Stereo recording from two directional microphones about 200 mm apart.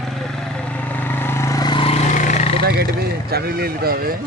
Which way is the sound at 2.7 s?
50° right (ahead or behind).